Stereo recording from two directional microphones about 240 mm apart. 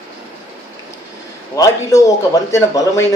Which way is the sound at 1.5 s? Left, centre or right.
Centre.